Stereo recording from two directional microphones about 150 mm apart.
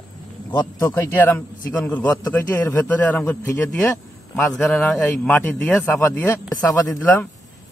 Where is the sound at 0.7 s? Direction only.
15° left (ahead or behind).